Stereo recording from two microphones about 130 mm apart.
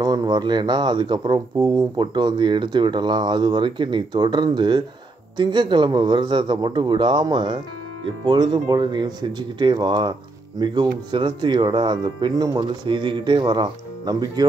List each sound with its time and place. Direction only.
0.0 s speech: 30° right (ahead or behind)